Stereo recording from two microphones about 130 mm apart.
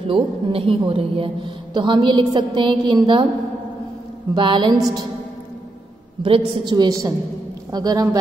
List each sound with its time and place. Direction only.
0.1 s a woman's voice: 45° right (ahead or behind)
4.3 s a woman's voice: 35° right (ahead or behind)
6.2 s a woman's voice: 40° right (ahead or behind)